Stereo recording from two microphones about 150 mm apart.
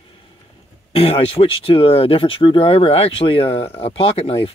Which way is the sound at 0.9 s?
40° left (ahead or behind).